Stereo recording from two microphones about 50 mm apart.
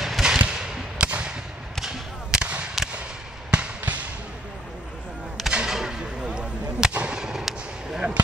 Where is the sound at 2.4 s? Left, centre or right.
Right.